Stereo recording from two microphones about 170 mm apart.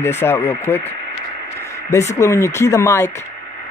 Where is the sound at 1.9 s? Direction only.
20° left (ahead or behind).